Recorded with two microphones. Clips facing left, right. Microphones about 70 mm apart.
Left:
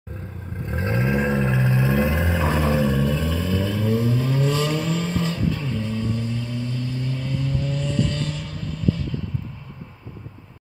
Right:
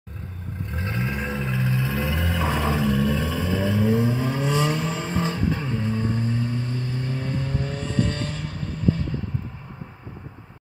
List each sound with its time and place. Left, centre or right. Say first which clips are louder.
0.7 s vehicle: left 6 dB; left
2.1 s a sound: left 3 dB; centre
3.1 s vehicle: left 1 dB; centre